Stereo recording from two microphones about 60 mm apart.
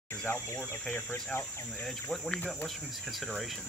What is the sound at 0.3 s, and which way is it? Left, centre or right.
Speech, left.